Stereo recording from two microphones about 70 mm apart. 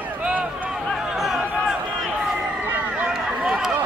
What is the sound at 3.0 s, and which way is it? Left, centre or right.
Run, centre.